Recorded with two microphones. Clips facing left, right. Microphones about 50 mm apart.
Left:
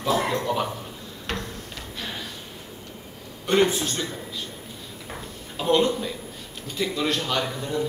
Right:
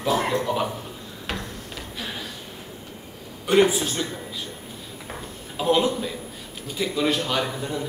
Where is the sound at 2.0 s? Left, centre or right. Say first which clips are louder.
Even; centre.